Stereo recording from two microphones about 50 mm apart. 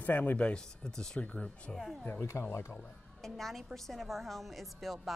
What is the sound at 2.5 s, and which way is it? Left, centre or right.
Speech, left.